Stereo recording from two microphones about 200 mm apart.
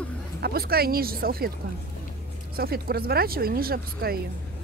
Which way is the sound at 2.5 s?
50° right (ahead or behind).